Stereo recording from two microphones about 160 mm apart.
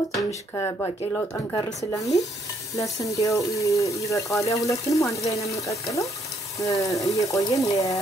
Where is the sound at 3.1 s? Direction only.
20° left (ahead or behind).